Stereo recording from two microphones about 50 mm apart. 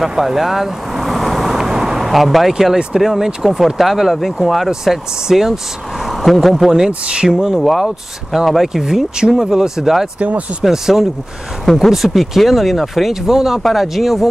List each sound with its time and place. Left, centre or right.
0.0 s vehicle: centre
2.5 s speech: centre
7.6 s speech: centre
10.1 s speech: right
10.6 s speech: centre
11.6 s speech: centre
11.9 s speech: centre